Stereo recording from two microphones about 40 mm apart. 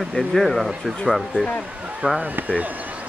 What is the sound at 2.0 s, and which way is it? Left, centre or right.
Speech, right.